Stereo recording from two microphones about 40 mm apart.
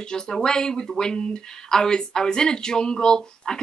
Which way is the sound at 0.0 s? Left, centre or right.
Centre.